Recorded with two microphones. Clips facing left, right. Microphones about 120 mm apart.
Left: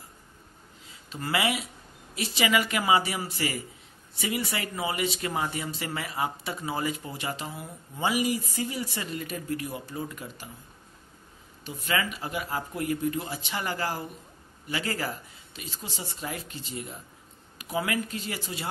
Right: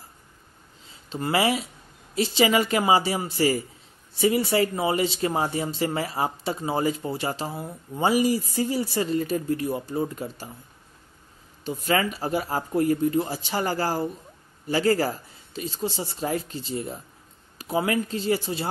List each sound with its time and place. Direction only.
0.8 s a woman's voice: 30° right (ahead or behind)
11.6 s speech: 35° right (ahead or behind)